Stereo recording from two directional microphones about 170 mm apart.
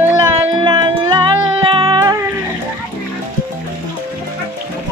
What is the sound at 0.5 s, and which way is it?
Music, 25° right (ahead or behind).